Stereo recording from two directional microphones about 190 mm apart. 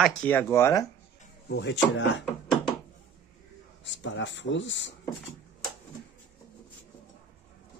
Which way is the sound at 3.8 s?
75° left (ahead or behind).